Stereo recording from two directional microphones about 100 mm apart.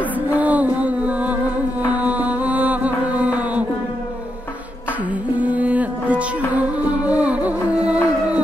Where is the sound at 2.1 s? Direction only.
15° right (ahead or behind).